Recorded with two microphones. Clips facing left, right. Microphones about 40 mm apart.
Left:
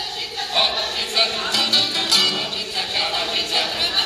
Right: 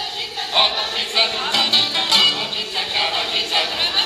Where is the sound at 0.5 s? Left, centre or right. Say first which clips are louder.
Right 2 dB; right.